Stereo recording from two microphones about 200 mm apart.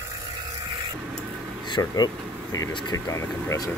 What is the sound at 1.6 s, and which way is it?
Speech, 20° left (ahead or behind).